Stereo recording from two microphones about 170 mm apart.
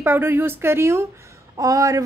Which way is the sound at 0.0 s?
15° right (ahead or behind).